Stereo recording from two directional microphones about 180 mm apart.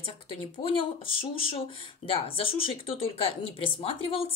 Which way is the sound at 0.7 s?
30° left (ahead or behind).